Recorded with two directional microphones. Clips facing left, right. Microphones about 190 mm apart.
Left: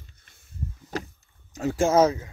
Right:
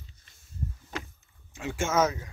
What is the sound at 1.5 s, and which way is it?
Speech, 40° left (ahead or behind).